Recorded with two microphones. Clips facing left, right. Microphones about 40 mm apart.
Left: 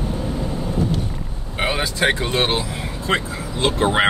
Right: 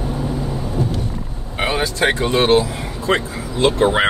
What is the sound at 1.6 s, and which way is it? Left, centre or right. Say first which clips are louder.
Speech: right 2 dB; centre.